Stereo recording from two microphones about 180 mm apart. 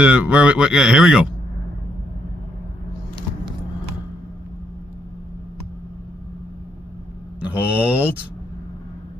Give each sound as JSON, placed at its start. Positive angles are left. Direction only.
{"t": 0.0, "sound": "speech", "side_deg": -5}
{"t": 7.3, "sound": "mantra", "side_deg": -10}